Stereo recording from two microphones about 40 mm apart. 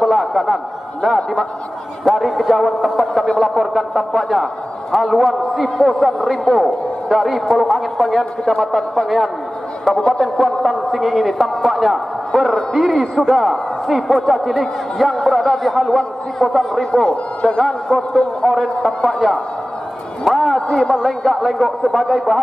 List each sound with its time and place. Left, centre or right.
0.0 s a man's voice: centre
17.1 s a man's voice: left
17.9 s a man's voice: centre
21.0 s a man's voice: centre